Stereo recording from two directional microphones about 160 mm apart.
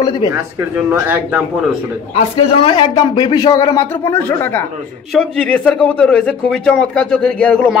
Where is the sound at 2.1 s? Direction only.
35° left (ahead or behind).